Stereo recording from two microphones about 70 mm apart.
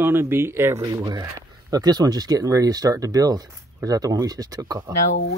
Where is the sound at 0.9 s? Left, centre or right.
Right.